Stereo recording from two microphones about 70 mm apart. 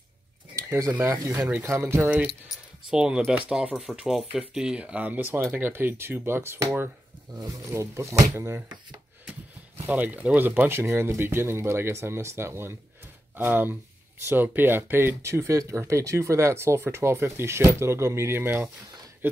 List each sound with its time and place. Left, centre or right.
0.9 s speech: right
1.6 s speech: right
2.9 s speech: centre; by 8.6 s right
9.8 s speech: right